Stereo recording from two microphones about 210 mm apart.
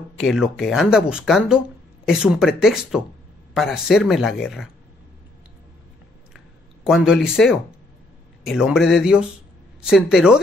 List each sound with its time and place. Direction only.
0.2 s speech: centre (ahead or behind)
6.9 s speech: 5° right (ahead or behind)